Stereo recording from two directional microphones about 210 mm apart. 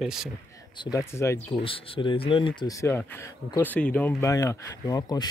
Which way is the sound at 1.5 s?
25° left (ahead or behind).